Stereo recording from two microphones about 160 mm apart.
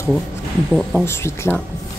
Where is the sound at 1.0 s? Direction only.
15° left (ahead or behind).